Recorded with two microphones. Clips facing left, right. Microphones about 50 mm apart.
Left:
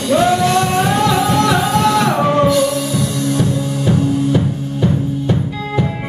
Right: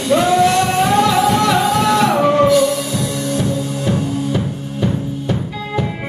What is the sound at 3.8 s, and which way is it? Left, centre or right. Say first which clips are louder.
Music: left 5 dB; centre.